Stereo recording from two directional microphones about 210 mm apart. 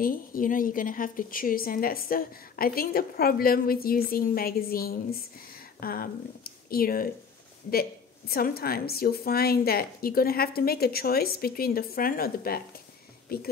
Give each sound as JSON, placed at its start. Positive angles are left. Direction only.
{"t": 0.0, "sound": "a woman's voice", "side_deg": 40}
{"t": 8.3, "sound": "a woman's voice", "side_deg": 45}